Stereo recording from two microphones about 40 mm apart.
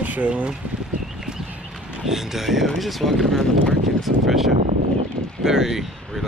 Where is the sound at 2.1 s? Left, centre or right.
Centre.